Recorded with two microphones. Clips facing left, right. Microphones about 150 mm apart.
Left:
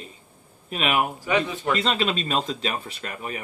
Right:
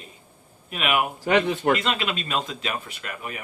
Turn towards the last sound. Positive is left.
turn(degrees=35)  # may be behind; listen again after turning